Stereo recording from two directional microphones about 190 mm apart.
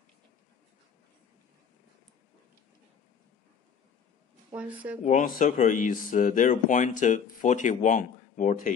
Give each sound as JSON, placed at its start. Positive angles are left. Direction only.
{"t": 4.6, "sound": "speech", "side_deg": -10}
{"t": 5.0, "sound": "speech", "side_deg": 45}